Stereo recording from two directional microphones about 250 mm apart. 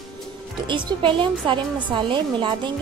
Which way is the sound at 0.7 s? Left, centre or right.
Centre.